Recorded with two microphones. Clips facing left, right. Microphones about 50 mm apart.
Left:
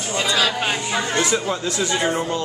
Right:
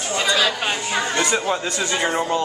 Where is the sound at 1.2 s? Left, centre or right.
Centre.